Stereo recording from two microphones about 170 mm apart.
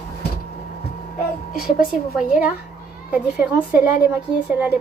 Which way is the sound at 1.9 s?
5° right (ahead or behind).